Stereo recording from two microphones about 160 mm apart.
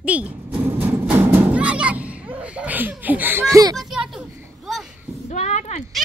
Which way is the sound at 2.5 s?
10° right (ahead or behind).